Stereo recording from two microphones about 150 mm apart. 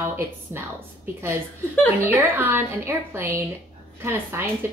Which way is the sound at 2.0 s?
15° right (ahead or behind).